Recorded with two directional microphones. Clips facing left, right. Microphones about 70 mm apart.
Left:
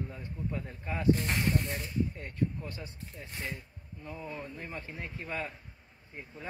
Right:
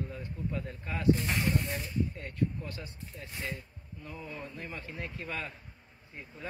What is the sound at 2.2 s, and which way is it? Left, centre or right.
Speech, left.